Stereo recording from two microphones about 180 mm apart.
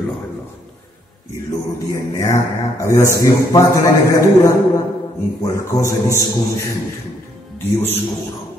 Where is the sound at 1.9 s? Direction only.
15° left (ahead or behind).